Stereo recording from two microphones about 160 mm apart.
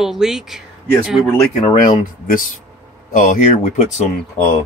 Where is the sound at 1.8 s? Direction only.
55° left (ahead or behind).